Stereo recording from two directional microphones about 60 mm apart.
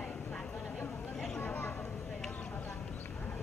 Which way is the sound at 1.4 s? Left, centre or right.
Left.